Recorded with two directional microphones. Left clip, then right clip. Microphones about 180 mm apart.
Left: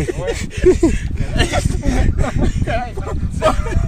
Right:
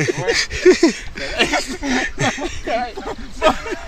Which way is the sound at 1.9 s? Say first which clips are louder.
Right 3 dB; 10° left (ahead or behind).